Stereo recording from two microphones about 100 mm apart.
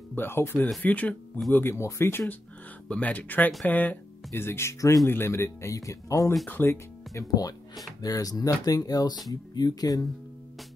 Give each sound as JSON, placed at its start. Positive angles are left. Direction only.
{"t": 0.1, "sound": "speech", "side_deg": 20}
{"t": 6.4, "sound": "speech", "side_deg": 20}
{"t": 8.0, "sound": "speech", "side_deg": 40}